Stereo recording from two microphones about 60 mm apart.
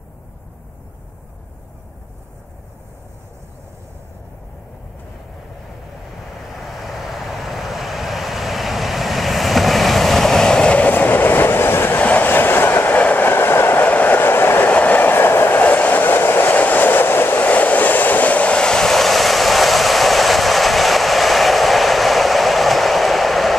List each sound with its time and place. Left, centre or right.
6.6 s vehicle: centre; by 12.0 s left
12.0 s train: left
13.8 s train: left
14.7 s train: left
15.6 s train: left
16.5 s train: left; by 23.5 s centre